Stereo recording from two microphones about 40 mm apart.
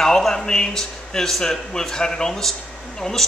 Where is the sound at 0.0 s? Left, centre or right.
Centre.